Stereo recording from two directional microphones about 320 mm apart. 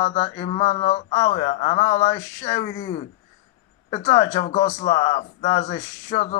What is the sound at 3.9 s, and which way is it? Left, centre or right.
Speech, centre.